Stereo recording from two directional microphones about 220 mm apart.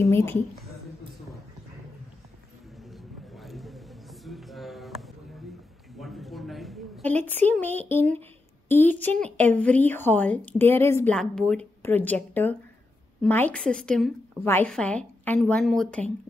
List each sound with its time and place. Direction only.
0.0 s a woman's voice: 10° left (ahead or behind)
2.9 s a sound: centre (ahead or behind)
7.9 s a woman's voice: 10° left (ahead or behind)